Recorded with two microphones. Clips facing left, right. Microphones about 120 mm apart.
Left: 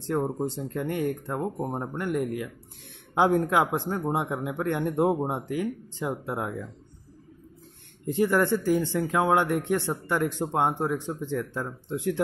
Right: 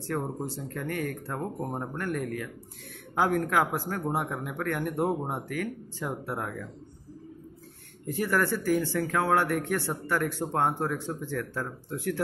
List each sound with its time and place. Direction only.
0.0 s speech: 20° left (ahead or behind)
8.1 s speech: 20° left (ahead or behind)